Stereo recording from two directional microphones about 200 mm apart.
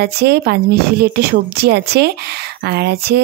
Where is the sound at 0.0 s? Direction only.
55° right (ahead or behind).